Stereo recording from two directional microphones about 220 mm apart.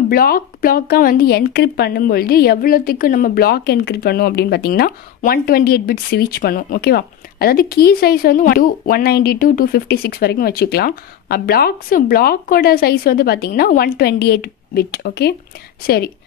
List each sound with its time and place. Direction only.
0.1 s a woman's voice: 40° left (ahead or behind)